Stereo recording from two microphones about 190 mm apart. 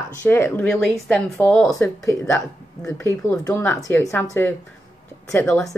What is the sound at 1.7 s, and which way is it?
A woman's voice, 15° left (ahead or behind).